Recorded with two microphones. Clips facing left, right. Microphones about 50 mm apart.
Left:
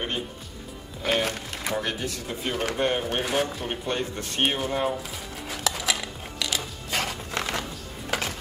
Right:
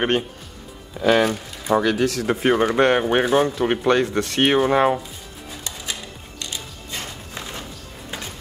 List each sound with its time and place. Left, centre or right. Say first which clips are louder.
1.0 s speech: right 8 dB; right
5.5 s a sound: left 5 dB; left
8.1 s music: left 5 dB; left